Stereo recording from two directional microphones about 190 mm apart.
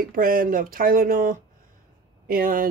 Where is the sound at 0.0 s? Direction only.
50° right (ahead or behind).